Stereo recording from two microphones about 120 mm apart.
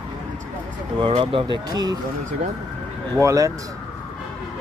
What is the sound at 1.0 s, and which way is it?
Speech, 45° right (ahead or behind).